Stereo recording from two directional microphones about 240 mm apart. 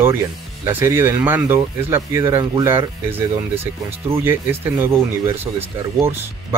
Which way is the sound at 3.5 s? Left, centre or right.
Right.